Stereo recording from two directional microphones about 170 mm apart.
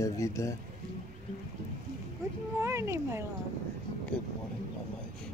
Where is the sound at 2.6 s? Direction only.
15° right (ahead or behind).